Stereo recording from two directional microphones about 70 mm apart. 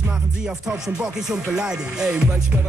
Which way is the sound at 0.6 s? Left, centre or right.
Centre.